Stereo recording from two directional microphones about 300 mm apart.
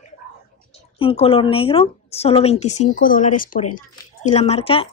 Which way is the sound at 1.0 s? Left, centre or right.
Centre.